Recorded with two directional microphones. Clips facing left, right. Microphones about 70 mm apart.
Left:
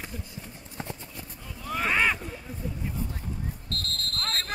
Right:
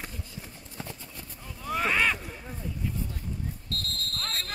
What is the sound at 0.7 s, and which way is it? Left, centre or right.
Clip-clop, left.